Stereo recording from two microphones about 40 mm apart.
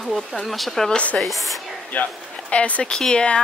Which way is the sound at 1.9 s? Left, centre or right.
Left.